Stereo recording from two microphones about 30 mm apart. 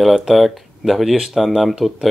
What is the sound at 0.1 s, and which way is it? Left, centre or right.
Speech, centre.